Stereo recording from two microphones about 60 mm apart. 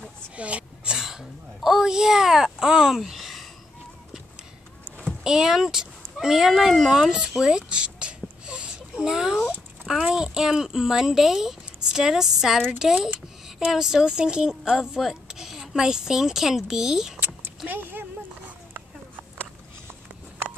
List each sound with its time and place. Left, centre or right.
0.4 s speech: right
0.9 s a sound: centre
5.2 s speech: centre
17.6 s speech: right